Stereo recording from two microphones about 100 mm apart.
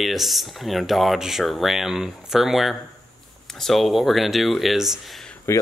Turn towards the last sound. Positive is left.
turn(degrees=25)  # may be behind; listen again after turning